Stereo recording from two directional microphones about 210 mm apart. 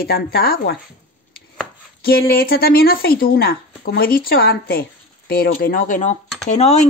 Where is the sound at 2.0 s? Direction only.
45° left (ahead or behind).